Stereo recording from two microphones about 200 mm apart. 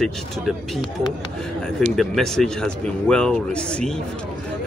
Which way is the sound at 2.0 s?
Centre (ahead or behind).